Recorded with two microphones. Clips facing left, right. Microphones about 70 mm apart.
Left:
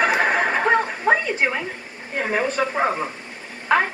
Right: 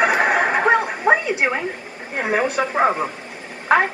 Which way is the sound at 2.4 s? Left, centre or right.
Centre.